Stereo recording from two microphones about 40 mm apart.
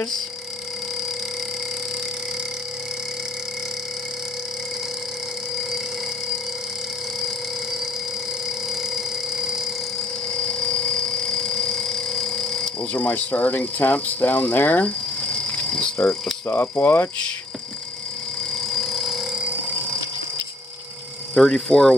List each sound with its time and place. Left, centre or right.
8.9 s telephone: centre
10.3 s a sound: left
12.9 s speech: left
15.2 s cricket: left
16.4 s speech: left
18.7 s a sound: centre
21.4 s speech: centre